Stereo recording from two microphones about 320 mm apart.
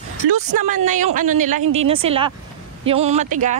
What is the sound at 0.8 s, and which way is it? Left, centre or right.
Speech, right.